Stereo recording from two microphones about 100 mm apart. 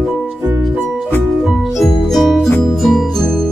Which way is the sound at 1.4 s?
5° right (ahead or behind).